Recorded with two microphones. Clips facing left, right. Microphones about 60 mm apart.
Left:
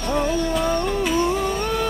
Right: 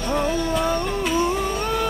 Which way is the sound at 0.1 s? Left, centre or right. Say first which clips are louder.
Left 1 dB; centre.